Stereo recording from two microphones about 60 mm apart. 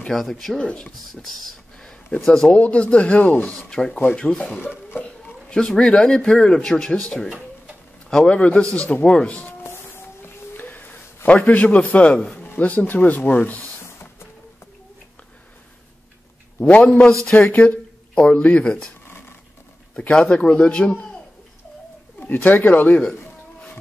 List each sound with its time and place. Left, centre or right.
0.1 s speech: centre
1.2 s a sound: centre
2.3 s speech: centre
3.5 s speech: centre
4.6 s a sound: left
5.6 s speech: centre
9.5 s a sound: left
12.5 s speech: left
16.5 s speech: left
19.0 s a sound: left
20.1 s speech: centre
22.2 s speech: left